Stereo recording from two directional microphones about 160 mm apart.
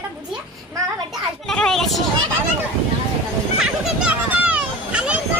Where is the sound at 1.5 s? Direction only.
Centre (ahead or behind).